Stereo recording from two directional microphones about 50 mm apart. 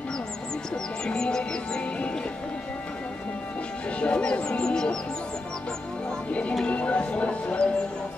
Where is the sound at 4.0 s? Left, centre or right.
Left.